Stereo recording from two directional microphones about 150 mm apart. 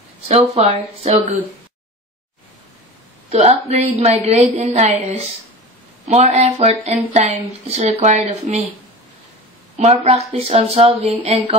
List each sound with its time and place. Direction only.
0.7 s speech: 35° right (ahead or behind)
3.3 s a woman's voice: 45° right (ahead or behind)
9.8 s speech: 45° right (ahead or behind)